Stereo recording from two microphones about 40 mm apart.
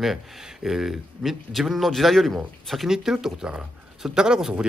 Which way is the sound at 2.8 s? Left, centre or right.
Centre.